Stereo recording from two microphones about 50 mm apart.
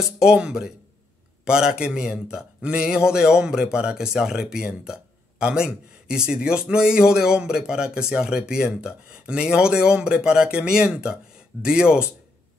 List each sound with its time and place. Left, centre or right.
0.0 s a man's voice: centre